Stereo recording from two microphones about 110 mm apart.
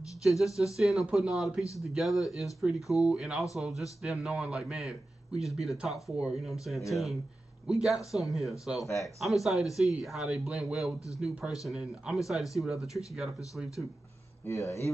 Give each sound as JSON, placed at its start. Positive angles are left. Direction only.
{"t": 0.2, "sound": "speech", "side_deg": 0}
{"t": 14.4, "sound": "speech", "side_deg": 25}